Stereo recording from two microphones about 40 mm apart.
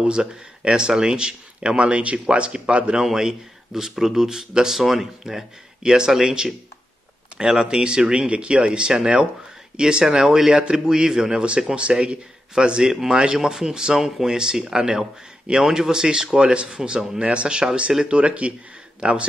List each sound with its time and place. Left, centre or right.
0.0 s speech: right
3.0 s speech: centre; by 18.5 s right